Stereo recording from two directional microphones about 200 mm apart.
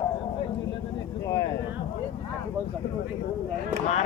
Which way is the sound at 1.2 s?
15° left (ahead or behind).